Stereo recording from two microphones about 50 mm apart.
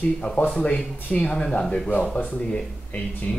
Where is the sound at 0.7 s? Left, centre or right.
Left.